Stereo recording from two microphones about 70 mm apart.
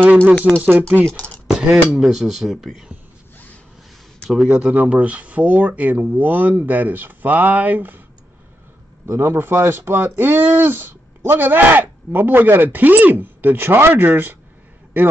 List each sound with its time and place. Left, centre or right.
0.0 s speech: right
1.0 s speech: centre
1.9 s cutlery: centre
4.3 s cutlery: centre
4.6 s speech: centre
9.0 s speech: right